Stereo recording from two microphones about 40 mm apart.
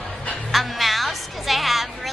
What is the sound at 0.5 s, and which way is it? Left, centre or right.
Music, centre.